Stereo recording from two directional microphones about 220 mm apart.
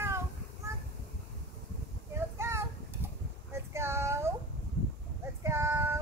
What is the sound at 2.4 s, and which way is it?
Child singing, 10° right (ahead or behind).